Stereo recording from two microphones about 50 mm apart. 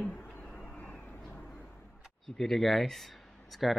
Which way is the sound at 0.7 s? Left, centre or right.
Left.